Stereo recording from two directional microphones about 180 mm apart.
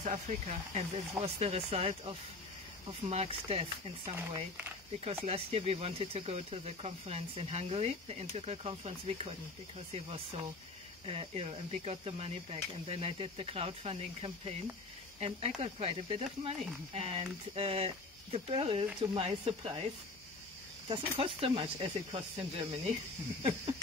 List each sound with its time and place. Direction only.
0.0 s speech: 40° right (ahead or behind)
20.9 s speech: 30° right (ahead or behind)